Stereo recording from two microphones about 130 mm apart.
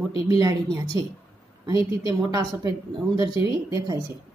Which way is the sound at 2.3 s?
30° right (ahead or behind).